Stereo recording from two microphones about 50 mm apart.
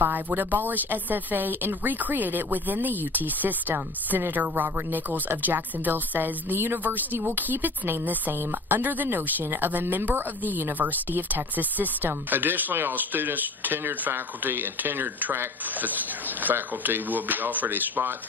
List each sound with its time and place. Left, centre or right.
0.0 s speech: right